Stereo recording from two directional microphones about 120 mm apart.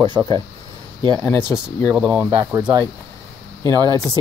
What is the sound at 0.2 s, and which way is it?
Speech, 15° right (ahead or behind).